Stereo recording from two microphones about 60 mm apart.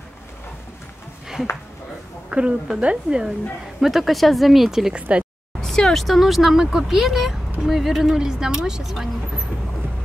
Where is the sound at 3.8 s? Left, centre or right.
Centre.